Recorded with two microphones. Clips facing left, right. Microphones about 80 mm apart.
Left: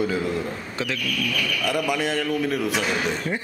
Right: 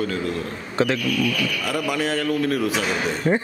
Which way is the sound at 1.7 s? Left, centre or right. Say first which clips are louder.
Left 1 dB; centre.